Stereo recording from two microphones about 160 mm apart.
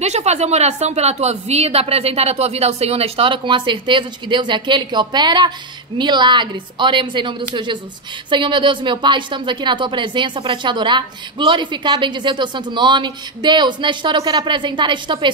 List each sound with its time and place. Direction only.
0.0 s a woman's voice: 45° right (ahead or behind)